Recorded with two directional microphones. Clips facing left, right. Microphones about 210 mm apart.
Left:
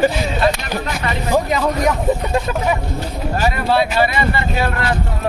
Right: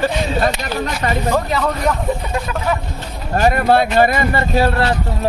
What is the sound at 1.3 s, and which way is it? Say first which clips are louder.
Speech: left 5 dB; 10° left (ahead or behind).